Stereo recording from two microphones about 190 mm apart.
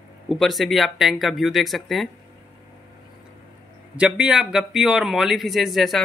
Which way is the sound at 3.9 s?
5° right (ahead or behind).